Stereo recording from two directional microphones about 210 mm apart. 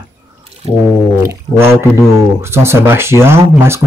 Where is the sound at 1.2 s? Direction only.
10° right (ahead or behind).